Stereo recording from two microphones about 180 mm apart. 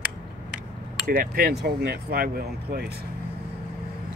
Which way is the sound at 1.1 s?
55° right (ahead or behind).